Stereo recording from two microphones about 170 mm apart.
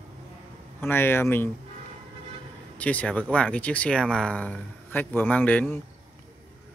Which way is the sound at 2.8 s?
10° left (ahead or behind).